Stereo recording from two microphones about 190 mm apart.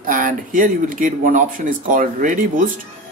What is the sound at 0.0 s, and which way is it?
Speech, 45° right (ahead or behind).